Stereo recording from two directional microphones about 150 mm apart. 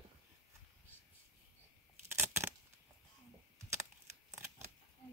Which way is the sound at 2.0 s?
15° right (ahead or behind).